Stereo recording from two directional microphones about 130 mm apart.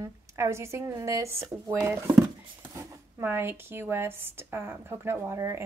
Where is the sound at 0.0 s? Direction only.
20° right (ahead or behind).